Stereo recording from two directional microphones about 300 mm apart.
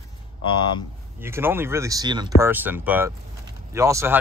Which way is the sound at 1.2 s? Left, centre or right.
Centre.